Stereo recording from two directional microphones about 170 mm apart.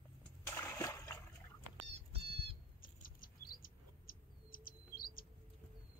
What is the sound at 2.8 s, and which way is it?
Bird, 55° left (ahead or behind).